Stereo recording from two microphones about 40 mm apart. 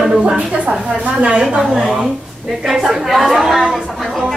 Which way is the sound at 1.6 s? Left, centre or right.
Centre.